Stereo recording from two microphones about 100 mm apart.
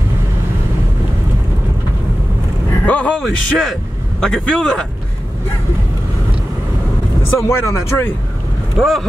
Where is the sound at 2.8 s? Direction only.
15° left (ahead or behind).